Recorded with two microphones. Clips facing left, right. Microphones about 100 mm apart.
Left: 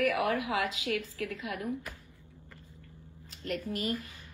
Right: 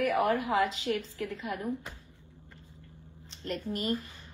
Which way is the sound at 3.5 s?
35° right (ahead or behind).